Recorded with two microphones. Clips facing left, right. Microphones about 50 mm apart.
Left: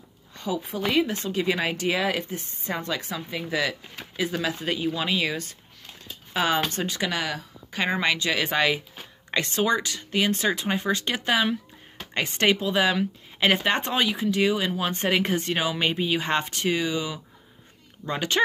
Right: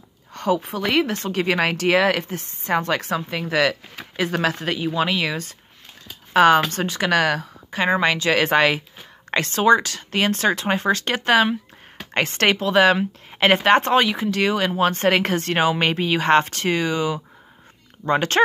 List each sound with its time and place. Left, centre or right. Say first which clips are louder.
0.3 s a woman's voice: right 8 dB; right
7.1 s a woman's voice: right 15 dB; right
7.7 s speech: right 5 dB; right
8.2 s speech: right 6 dB; right
12.9 s speech: right 4 dB; right